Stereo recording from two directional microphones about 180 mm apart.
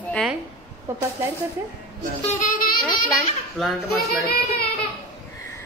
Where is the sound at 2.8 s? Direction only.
Centre (ahead or behind).